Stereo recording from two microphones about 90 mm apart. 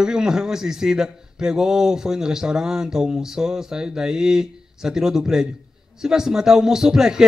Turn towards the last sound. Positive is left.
turn(degrees=-5)  # may be behind; listen again after turning